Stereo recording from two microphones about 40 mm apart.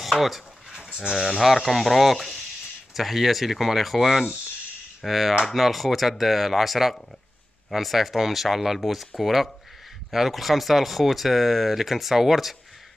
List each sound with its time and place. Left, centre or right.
0.0 s speech: centre
0.7 s a sound: right
1.2 s speech: centre